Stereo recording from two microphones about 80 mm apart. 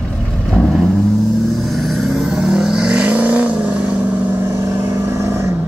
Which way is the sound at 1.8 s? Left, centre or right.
Centre.